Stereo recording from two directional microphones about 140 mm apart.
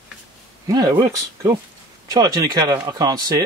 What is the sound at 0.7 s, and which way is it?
Speech, 25° right (ahead or behind).